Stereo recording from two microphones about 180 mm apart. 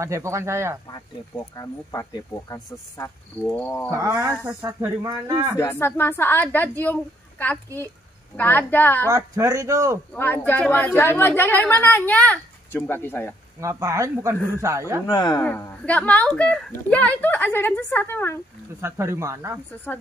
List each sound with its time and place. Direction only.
0.0 s speech: 15° right (ahead or behind)
0.8 s speech: 20° left (ahead or behind)
3.9 s speech: 15° right (ahead or behind)
5.6 s speech: 15° left (ahead or behind)
9.0 s speech: 15° right (ahead or behind)
10.1 s speech: 10° left (ahead or behind)
13.6 s speech: 15° right (ahead or behind)
15.0 s speech: 20° left (ahead or behind)
15.4 s speech: 10° left (ahead or behind)
18.8 s speech: 15° right (ahead or behind)